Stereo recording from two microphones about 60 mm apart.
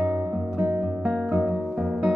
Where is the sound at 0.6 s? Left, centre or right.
Centre.